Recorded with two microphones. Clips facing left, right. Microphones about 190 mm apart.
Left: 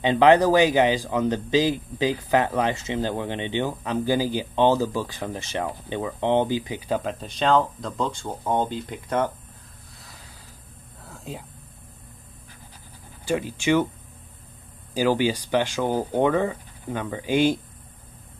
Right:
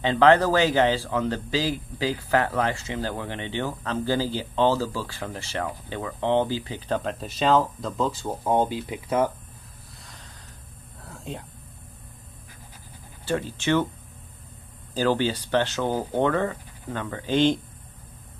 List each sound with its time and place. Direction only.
0.0 s speech: 15° left (ahead or behind)
7.0 s speech: centre (ahead or behind)
11.1 s a sound: centre (ahead or behind)
13.2 s speech: 10° left (ahead or behind)
15.0 s speech: 10° left (ahead or behind)